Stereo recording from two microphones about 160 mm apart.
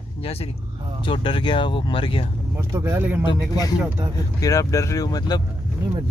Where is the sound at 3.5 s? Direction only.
25° left (ahead or behind).